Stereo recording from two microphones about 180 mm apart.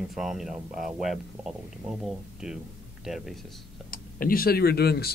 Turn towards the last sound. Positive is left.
turn(degrees=60)  # may be behind; listen again after turning